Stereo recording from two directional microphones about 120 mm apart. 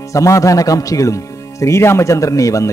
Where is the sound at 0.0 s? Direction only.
25° left (ahead or behind).